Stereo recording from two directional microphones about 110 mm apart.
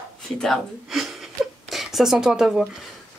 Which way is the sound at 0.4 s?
Centre (ahead or behind).